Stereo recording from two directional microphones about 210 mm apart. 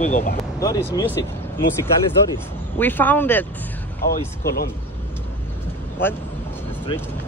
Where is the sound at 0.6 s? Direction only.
15° left (ahead or behind).